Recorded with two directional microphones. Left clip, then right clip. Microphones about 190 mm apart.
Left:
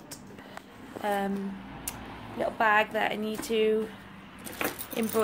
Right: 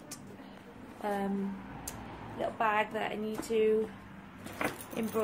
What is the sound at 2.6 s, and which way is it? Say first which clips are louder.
Speech: left 7 dB; 25° left (ahead or behind).